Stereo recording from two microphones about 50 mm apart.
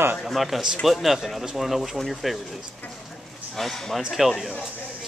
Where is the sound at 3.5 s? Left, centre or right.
Centre.